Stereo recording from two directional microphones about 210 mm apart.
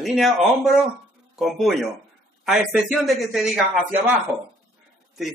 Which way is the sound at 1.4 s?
Centre (ahead or behind).